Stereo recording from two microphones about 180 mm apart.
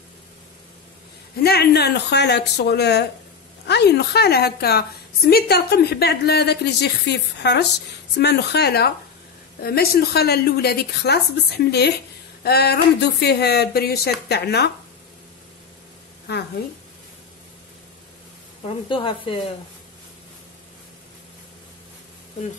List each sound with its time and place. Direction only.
1.4 s a woman's voice: 60° left (ahead or behind)
16.3 s speech: 65° left (ahead or behind)
18.9 s speech: 25° left (ahead or behind)